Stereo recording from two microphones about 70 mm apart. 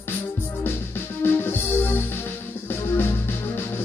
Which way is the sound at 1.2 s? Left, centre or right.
Left.